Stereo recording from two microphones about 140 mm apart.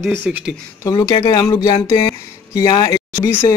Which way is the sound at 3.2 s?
20° left (ahead or behind).